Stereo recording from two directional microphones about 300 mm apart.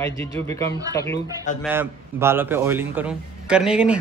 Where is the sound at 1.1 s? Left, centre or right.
Left.